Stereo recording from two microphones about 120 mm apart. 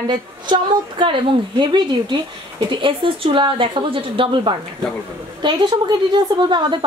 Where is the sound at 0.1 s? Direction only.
40° right (ahead or behind).